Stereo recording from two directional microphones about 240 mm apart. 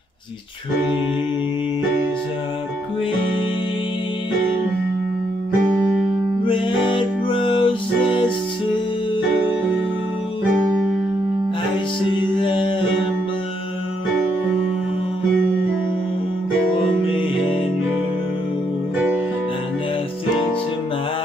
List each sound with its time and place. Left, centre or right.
6.4 s music: centre
12.1 s music: left
17.0 s music: left